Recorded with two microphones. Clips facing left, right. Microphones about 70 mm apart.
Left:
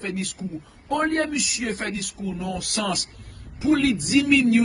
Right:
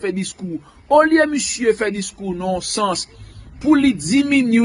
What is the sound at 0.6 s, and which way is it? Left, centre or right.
A man's voice, right.